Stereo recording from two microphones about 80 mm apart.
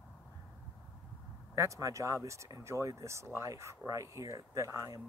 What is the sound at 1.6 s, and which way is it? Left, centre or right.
Speech, right.